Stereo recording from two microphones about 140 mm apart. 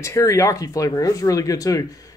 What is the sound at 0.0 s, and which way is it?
Speech, 20° left (ahead or behind).